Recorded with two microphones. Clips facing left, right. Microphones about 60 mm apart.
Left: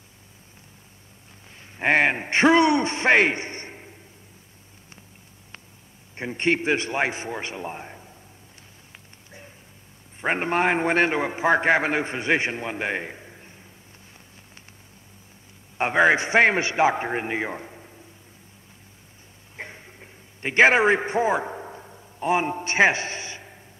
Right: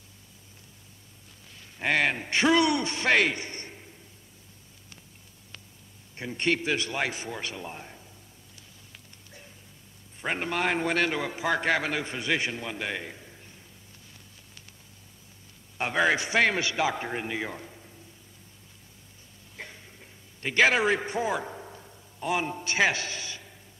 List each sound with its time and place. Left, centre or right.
1.8 s a man's voice: left
6.1 s a man's voice: left
10.2 s a man's voice: left
15.8 s a man's voice: left
19.5 s a sound: left